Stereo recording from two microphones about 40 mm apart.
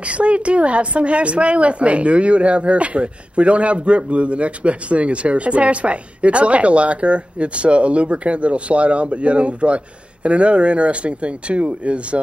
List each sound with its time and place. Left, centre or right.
0.0 s a woman's voice: right